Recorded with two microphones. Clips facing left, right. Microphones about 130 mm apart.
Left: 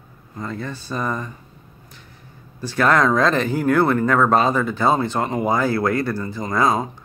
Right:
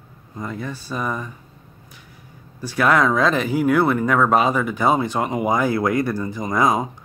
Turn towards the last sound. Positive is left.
turn(degrees=-15)  # may be behind; listen again after turning